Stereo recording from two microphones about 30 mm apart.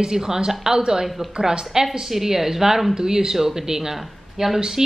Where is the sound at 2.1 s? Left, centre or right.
Centre.